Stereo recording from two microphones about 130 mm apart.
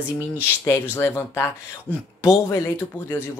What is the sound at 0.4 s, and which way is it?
Speech, 20° left (ahead or behind).